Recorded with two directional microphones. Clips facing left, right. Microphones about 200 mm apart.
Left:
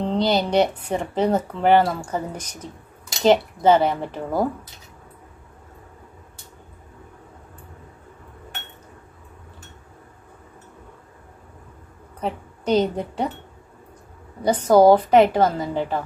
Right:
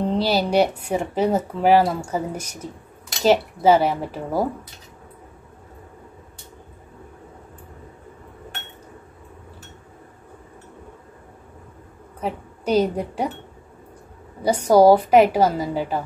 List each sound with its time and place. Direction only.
0.0 s a woman's voice: 10° right (ahead or behind)
12.2 s a woman's voice: 5° right (ahead or behind)
14.4 s a woman's voice: 10° right (ahead or behind)